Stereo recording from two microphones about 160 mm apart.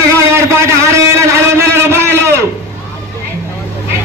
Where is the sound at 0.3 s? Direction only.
15° right (ahead or behind).